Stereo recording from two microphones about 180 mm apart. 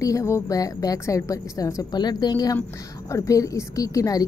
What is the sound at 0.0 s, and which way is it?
A woman's voice, 15° left (ahead or behind).